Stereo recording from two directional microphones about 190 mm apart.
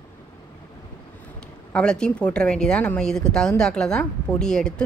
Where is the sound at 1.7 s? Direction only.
5° left (ahead or behind).